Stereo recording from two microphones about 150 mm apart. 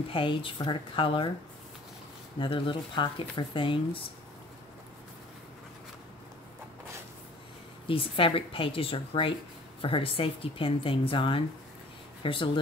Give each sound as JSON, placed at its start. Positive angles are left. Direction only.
{"t": 0.1, "sound": "speech", "side_deg": 35}
{"t": 2.3, "sound": "speech", "side_deg": 35}
{"t": 7.9, "sound": "speech", "side_deg": 35}